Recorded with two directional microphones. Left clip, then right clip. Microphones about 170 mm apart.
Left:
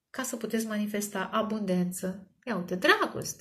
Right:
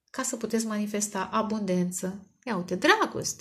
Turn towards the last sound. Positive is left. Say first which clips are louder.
# right 2 dB
turn(degrees=-40)  # may be behind; listen again after turning